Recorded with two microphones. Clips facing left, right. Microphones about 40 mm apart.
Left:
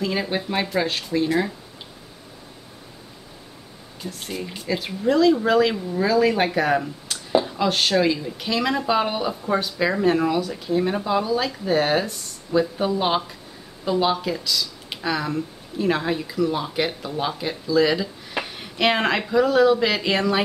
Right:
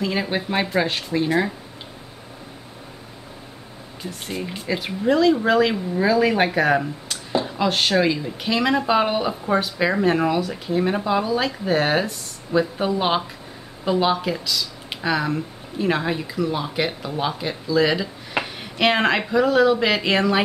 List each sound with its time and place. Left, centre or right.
0.0 s speech: centre
4.0 s speech: centre